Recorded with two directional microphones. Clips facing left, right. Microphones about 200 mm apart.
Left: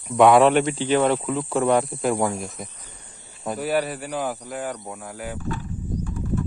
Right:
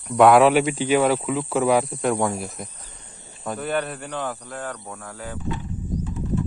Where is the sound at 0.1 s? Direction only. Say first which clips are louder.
Right 1 dB; centre (ahead or behind).